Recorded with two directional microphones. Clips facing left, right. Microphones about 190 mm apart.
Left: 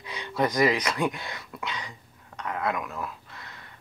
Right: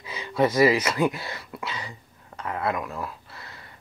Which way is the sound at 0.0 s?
5° right (ahead or behind).